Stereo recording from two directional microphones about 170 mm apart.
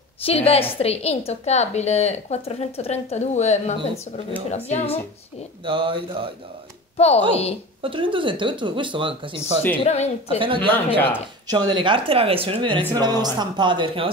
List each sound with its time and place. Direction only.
0.2 s a woman's voice: 35° left (ahead or behind)
5.7 s speech: 30° right (ahead or behind)
7.0 s a woman's voice: 40° left (ahead or behind)
7.8 s speech: 30° right (ahead or behind)
9.4 s speech: 10° left (ahead or behind)
9.8 s a woman's voice: 40° left (ahead or behind)
10.4 s speech: 30° right (ahead or behind)